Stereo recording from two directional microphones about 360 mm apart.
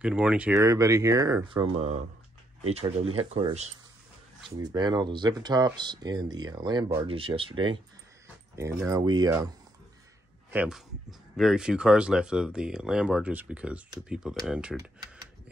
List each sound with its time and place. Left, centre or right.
0.0 s speech: centre
10.5 s speech: centre